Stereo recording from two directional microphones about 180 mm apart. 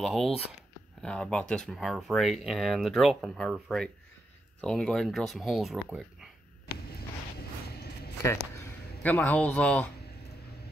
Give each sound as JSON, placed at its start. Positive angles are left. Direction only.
{"t": 0.0, "sound": "speech", "side_deg": 0}
{"t": 7.0, "sound": "a sound", "side_deg": 60}
{"t": 9.0, "sound": "speech", "side_deg": 10}